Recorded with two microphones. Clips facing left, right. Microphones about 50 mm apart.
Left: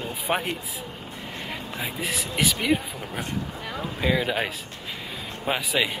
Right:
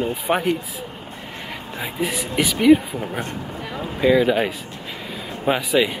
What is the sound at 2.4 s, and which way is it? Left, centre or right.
Speech, centre.